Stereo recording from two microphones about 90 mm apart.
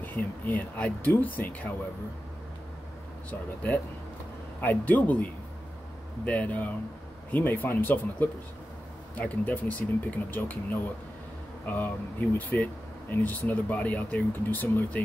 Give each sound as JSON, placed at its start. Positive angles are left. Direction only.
{"t": 0.0, "sound": "speech", "side_deg": 20}
{"t": 3.3, "sound": "speech", "side_deg": 20}